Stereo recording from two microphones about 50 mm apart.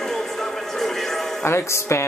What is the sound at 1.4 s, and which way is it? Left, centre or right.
Speech, left.